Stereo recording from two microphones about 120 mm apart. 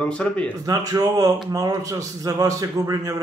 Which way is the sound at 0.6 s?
30° right (ahead or behind).